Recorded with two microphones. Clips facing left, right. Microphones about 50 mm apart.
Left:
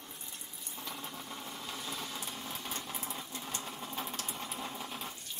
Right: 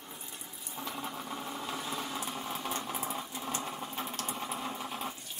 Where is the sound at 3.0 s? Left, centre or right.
Centre.